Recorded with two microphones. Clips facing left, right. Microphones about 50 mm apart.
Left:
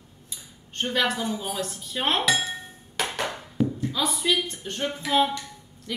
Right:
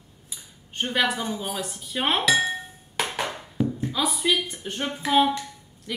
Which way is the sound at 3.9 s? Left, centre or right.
Centre.